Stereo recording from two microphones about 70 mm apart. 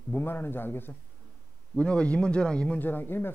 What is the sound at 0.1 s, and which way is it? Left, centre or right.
Speech, left.